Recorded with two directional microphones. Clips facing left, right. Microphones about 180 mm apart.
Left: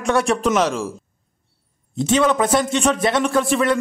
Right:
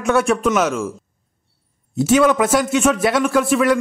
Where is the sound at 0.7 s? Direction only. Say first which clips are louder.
Right 2 dB; 35° left (ahead or behind).